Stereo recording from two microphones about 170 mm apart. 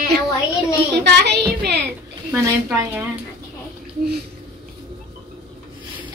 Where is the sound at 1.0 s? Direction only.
80° right.